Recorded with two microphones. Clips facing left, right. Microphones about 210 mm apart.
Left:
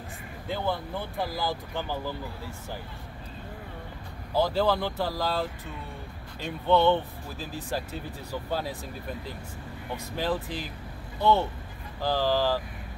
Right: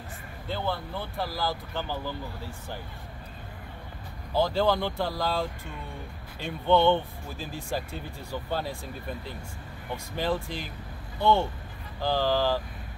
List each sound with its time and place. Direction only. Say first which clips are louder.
0.5 s speech: left 1 dB; 15° left (ahead or behind)
4.4 s speech: even; 5° left (ahead or behind)
10.1 s speech: even; 5° left (ahead or behind)